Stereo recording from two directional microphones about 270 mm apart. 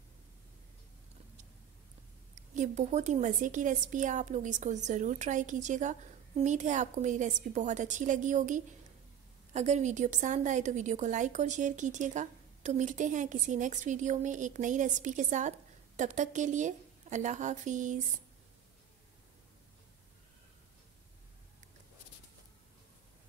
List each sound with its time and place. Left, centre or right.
2.3 s a woman's voice: right